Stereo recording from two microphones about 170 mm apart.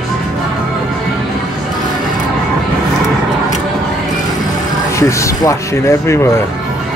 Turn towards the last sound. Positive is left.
turn(degrees=15)  # may be behind; listen again after turning